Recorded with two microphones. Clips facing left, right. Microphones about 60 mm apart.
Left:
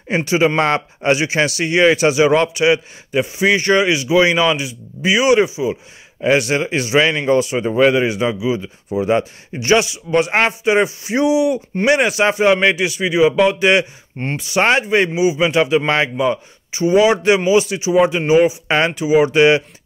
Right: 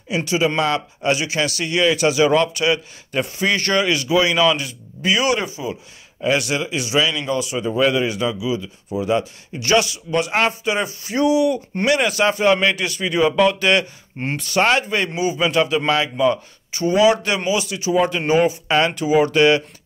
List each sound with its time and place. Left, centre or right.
0.1 s a man's voice: left
14.1 s speech: centre
14.6 s speech: left
18.7 s speech: left